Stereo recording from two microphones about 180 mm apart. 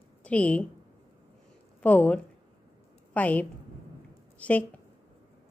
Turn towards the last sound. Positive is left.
turn(degrees=10)  # may be behind; listen again after turning